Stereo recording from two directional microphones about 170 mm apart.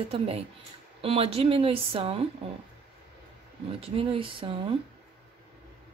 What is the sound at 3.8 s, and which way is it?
Speech, 35° right (ahead or behind).